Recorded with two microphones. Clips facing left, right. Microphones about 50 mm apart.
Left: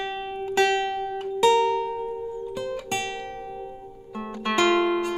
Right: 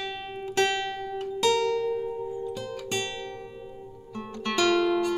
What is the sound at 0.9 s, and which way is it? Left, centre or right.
Music, centre.